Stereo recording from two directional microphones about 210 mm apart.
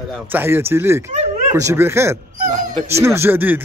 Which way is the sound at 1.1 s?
30° right (ahead or behind).